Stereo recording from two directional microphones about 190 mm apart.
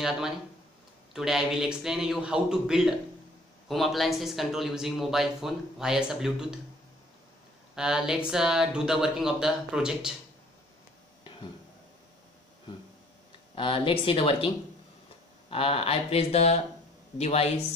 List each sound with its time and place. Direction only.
1.1 s speech: centre (ahead or behind)
7.7 s speech: 5° right (ahead or behind)
13.6 s speech: 30° left (ahead or behind)
15.5 s speech: 30° left (ahead or behind)